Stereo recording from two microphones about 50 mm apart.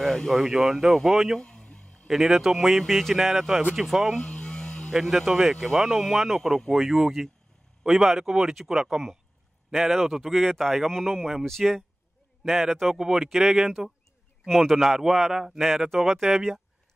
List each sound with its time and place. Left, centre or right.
0.0 s speech: centre
1.4 s a sound: centre
2.0 s speech: centre
4.2 s vehicle: centre
5.3 s speech: centre